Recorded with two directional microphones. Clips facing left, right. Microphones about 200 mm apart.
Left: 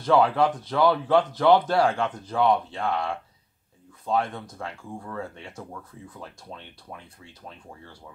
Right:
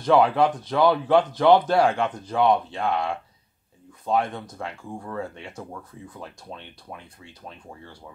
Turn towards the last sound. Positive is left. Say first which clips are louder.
# right 2 dB
turn(degrees=-20)  # may be behind; listen again after turning